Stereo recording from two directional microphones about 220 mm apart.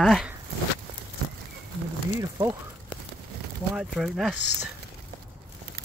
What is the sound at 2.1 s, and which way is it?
Speech, 20° right (ahead or behind).